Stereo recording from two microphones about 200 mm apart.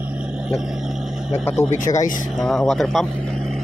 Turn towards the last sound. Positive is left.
turn(degrees=0)  # may be behind; listen again after turning